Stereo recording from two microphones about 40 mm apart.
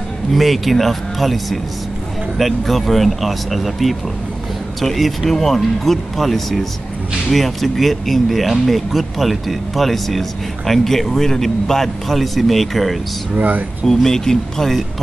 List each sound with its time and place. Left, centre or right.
0.3 s speech: centre
13.3 s speech: right
13.8 s speech: centre